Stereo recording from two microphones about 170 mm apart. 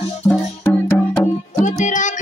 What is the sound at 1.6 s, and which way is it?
Music, 45° left (ahead or behind).